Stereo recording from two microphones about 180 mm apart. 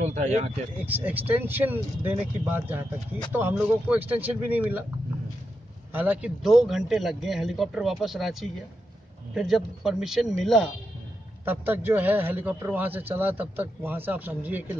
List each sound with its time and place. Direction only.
0.0 s a sound: 40° right (ahead or behind)
0.8 s a man's voice: 10° right (ahead or behind)
5.9 s a man's voice: 5° right (ahead or behind)
11.4 s a man's voice: 10° right (ahead or behind)